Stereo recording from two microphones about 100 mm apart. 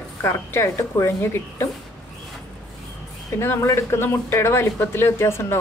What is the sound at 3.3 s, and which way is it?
A woman's voice, 25° left (ahead or behind).